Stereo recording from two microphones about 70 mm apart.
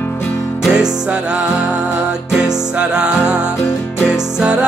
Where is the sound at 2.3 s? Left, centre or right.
Centre.